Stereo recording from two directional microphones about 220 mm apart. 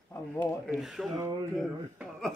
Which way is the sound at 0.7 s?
Centre (ahead or behind).